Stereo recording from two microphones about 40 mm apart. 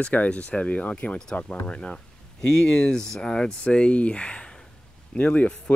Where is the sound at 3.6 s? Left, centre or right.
Left.